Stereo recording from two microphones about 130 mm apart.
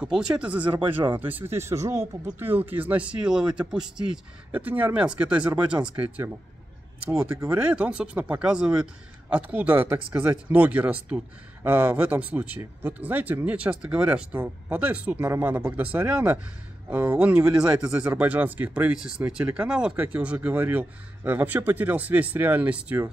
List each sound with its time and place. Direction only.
0.0 s speech: 5° right (ahead or behind)
7.1 s speech: 15° right (ahead or behind)